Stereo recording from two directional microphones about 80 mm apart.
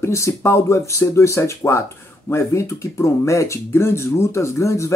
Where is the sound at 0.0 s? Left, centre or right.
Left.